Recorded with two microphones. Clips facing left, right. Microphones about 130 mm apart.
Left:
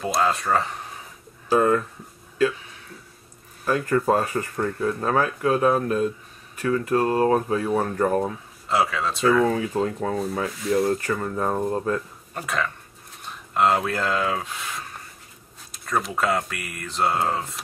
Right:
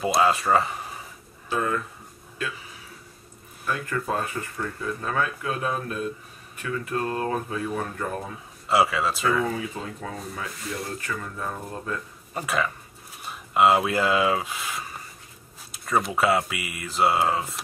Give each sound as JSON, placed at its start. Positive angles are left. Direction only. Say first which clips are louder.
{"t": 0.0, "sound": "speech", "louder": "right 1 dB", "side_deg": -5}
{"t": 1.5, "sound": "speech", "louder": "left 7 dB", "side_deg": 40}
{"t": 2.5, "sound": "a sound", "louder": "left 1 dB", "side_deg": -5}
{"t": 3.6, "sound": "speech", "louder": "left 7 dB", "side_deg": 40}
{"t": 4.6, "sound": "speech", "louder": "left 7 dB", "side_deg": 55}
{"t": 5.1, "sound": "speech", "louder": "left 6 dB", "side_deg": 35}
{"t": 8.6, "sound": "speech", "louder": "right 1 dB", "side_deg": -5}
{"t": 9.9, "sound": "speech", "louder": "left 9 dB", "side_deg": 45}
{"t": 12.4, "sound": "speech", "louder": "right 1 dB", "side_deg": -5}